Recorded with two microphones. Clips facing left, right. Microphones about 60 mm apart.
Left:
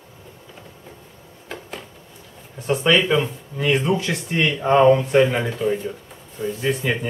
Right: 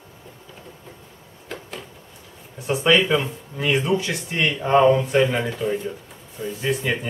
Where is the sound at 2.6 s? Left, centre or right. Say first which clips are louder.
Even; centre.